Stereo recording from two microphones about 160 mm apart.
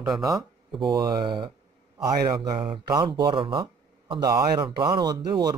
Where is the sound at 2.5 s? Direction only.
35° right (ahead or behind).